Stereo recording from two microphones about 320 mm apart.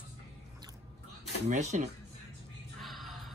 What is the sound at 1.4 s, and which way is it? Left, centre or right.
Speech, right.